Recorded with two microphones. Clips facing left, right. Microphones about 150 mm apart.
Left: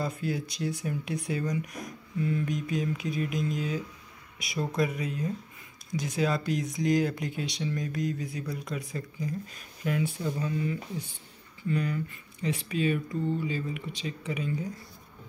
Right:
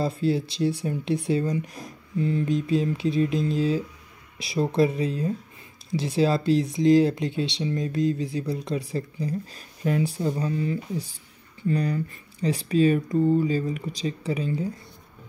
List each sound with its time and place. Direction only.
0.0 s speech: 30° right (ahead or behind)